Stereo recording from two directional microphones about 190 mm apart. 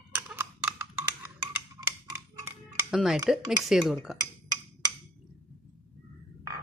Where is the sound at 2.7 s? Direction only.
5° right (ahead or behind).